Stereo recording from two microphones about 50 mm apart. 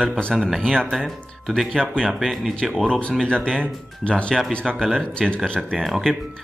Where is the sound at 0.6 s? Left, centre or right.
Centre.